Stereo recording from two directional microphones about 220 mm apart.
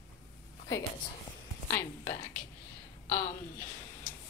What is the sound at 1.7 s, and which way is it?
Speech, 10° left (ahead or behind).